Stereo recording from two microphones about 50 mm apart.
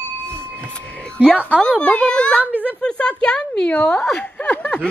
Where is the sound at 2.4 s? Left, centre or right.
Right.